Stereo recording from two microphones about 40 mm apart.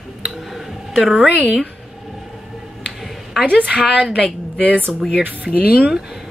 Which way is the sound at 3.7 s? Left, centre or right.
Right.